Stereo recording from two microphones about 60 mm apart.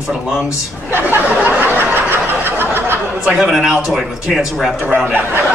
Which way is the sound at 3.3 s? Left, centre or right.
Centre.